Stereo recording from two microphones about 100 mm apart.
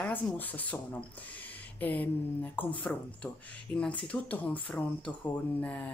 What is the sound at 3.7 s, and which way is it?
Speech, 15° left (ahead or behind).